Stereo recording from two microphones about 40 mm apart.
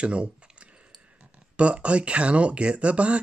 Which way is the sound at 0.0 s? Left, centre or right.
Right.